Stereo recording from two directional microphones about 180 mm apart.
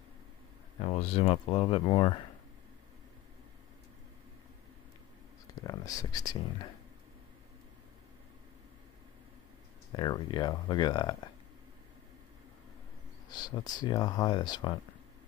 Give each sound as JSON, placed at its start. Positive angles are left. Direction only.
{"t": 0.7, "sound": "speech", "side_deg": 30}
{"t": 5.6, "sound": "speech", "side_deg": 20}
{"t": 9.9, "sound": "speech", "side_deg": 25}
{"t": 13.3, "sound": "speech", "side_deg": 20}